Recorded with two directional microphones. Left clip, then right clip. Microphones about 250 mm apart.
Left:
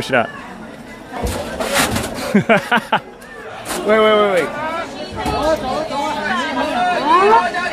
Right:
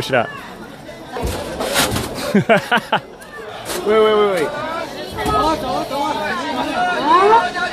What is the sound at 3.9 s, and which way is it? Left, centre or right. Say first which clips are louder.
Speech: left 1 dB; left.